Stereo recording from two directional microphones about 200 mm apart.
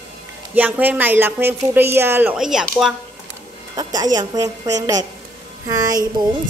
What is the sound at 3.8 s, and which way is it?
A woman's voice, 20° right (ahead or behind).